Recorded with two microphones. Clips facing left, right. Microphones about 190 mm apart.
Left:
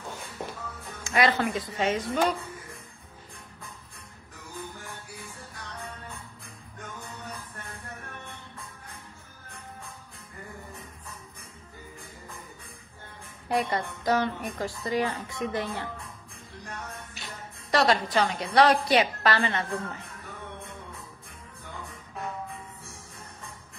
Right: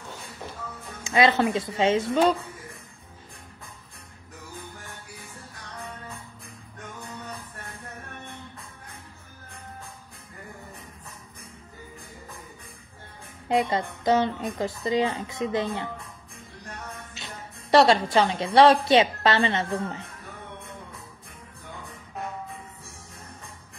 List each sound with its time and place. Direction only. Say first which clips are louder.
1.0 s a woman's voice: right 4 dB; 25° right (ahead or behind)
13.5 s a woman's voice: right 3 dB; 20° right (ahead or behind)
17.1 s a woman's voice: right 2 dB; 25° right (ahead or behind)